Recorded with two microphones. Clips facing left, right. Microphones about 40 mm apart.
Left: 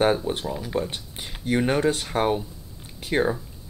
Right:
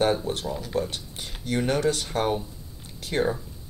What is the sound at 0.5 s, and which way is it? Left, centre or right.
Speech, centre.